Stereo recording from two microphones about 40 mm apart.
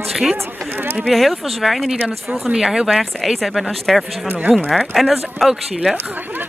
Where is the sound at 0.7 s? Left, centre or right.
Right.